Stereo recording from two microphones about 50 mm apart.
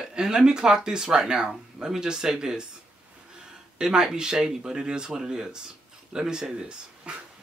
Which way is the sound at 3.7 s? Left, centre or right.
Centre.